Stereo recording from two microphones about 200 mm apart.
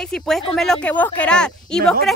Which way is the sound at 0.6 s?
5° left (ahead or behind).